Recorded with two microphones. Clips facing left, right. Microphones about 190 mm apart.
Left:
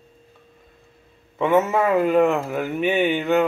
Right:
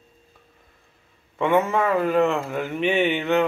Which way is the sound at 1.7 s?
10° left (ahead or behind).